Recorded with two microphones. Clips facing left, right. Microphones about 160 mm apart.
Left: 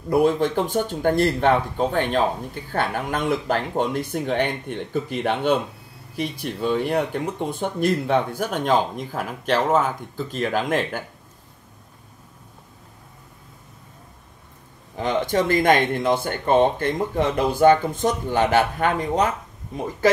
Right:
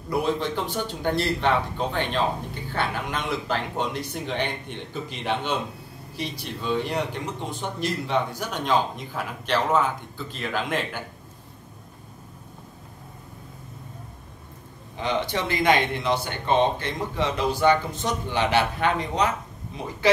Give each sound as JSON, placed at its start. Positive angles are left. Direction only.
{"t": 0.1, "sound": "speech", "side_deg": 50}
{"t": 15.0, "sound": "speech", "side_deg": 45}